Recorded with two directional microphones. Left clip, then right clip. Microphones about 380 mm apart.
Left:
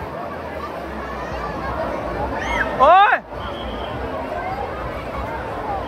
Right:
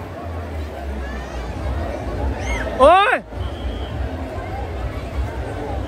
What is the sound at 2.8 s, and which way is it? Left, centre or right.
Speech, centre.